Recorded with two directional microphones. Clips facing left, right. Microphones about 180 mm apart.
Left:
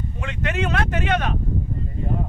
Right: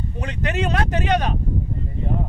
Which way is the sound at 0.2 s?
40° right (ahead or behind).